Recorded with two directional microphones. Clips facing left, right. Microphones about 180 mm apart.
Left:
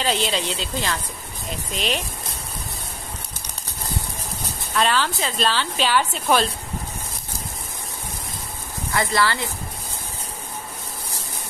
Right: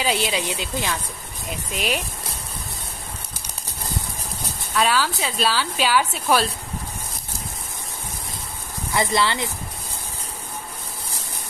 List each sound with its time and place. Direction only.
0.0 s speech: 10° right (ahead or behind)
4.7 s speech: 5° right (ahead or behind)
8.9 s speech: 20° right (ahead or behind)